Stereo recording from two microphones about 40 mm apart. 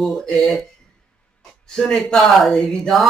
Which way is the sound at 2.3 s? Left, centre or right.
Centre.